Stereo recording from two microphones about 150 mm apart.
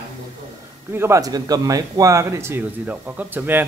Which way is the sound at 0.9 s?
15° right (ahead or behind).